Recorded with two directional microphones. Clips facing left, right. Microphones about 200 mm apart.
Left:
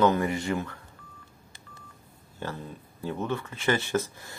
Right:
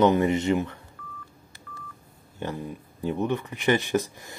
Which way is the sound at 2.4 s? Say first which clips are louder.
Right 4 dB; 15° right (ahead or behind).